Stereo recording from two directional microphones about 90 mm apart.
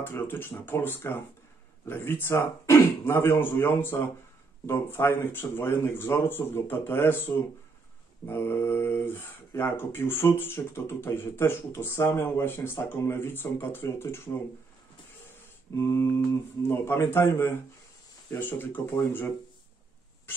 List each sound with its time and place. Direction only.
0.0 s speech: 25° left (ahead or behind)
15.7 s mantra: 30° left (ahead or behind)
16.6 s speech: 25° left (ahead or behind)